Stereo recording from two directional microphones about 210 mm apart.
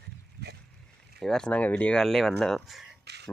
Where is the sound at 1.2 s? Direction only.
5° left (ahead or behind).